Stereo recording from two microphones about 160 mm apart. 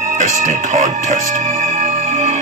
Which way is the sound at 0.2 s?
50° right (ahead or behind).